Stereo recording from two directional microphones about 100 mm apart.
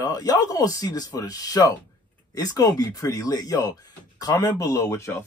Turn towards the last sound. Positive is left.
turn(degrees=25)  # may be behind; listen again after turning